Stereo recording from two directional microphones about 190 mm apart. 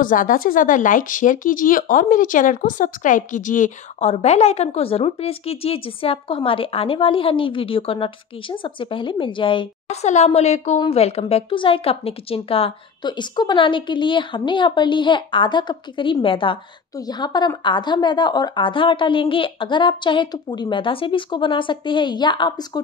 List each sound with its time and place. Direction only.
0.0 s speech: 45° left (ahead or behind); by 22.7 s 25° left (ahead or behind)